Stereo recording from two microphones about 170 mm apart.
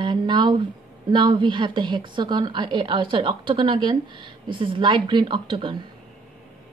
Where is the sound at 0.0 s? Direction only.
25° right (ahead or behind).